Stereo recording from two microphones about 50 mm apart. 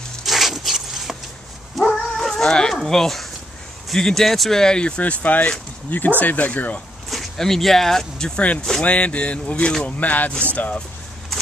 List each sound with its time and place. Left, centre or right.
0.2 s a sound: centre
1.8 s dog: centre
2.8 s speech: centre; by 6.8 s left
7.1 s speech: centre
8.8 s speech: left